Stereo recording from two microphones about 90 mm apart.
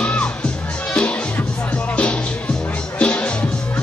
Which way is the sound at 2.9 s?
10° left (ahead or behind).